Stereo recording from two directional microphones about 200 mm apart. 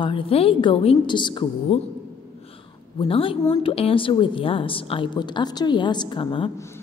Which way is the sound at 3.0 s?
25° left (ahead or behind).